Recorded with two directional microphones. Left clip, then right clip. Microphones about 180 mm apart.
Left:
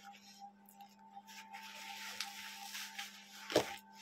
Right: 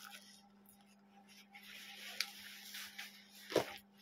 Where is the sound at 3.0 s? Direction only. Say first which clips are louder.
Left 3 dB; 20° left (ahead or behind).